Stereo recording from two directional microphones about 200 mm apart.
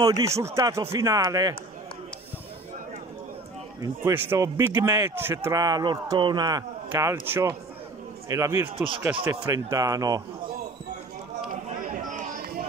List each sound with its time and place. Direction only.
0.2 s a man's voice: 15° right (ahead or behind)
3.8 s a man's voice: 10° right (ahead or behind)
8.7 s speech: 25° right (ahead or behind)
9.2 s a man's voice: 10° right (ahead or behind)
11.8 s chatter: 40° right (ahead or behind)